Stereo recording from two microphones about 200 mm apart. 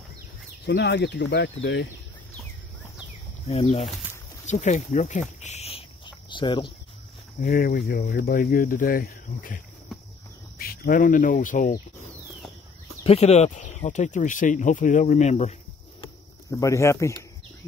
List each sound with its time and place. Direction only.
0.7 s speech: 60° left (ahead or behind)
3.4 s speech: 30° left (ahead or behind)
5.4 s cricket: 35° left (ahead or behind)
7.3 s speech: 45° left (ahead or behind)
9.9 s cricket: centre (ahead or behind)
10.6 s speech: 50° left (ahead or behind)
13.0 s speech: 30° left (ahead or behind)
16.0 s insect: 20° left (ahead or behind)